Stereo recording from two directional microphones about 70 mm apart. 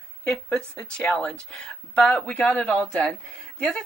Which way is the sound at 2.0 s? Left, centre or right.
Centre.